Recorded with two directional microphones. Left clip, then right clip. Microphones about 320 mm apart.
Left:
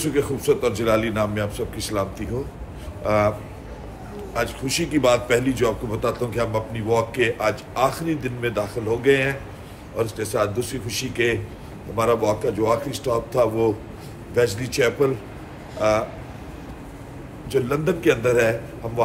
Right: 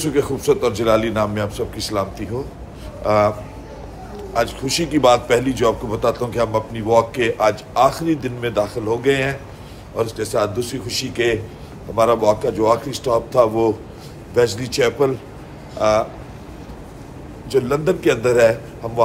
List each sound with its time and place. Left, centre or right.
0.0 s a man's voice: centre
17.5 s a man's voice: centre